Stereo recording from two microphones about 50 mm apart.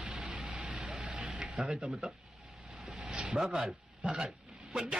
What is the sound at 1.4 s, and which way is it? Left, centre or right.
Speech, centre.